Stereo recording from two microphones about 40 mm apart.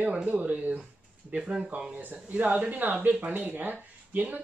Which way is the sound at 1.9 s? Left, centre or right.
Right.